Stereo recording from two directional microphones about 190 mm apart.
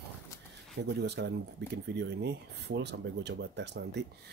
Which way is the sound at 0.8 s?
60° right (ahead or behind).